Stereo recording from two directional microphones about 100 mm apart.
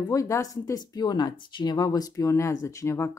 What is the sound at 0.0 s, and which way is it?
Speech, 35° left (ahead or behind).